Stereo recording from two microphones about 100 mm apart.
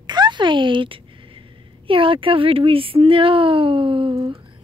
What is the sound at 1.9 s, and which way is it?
Speech, 60° right (ahead or behind).